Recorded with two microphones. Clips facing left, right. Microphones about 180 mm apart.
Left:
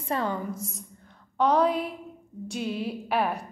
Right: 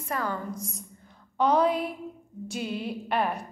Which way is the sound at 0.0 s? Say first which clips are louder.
Left 3 dB; 25° left (ahead or behind).